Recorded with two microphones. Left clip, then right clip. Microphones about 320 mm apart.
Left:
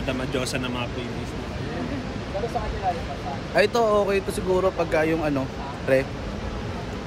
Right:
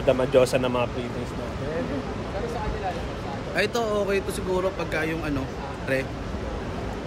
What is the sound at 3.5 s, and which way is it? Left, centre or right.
Speech, centre.